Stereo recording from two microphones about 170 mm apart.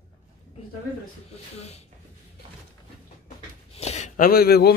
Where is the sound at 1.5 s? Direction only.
40° left (ahead or behind).